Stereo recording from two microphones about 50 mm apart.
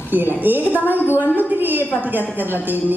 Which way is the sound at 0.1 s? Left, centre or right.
Right.